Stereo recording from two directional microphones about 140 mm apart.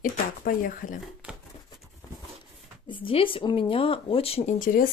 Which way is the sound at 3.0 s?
40° left (ahead or behind).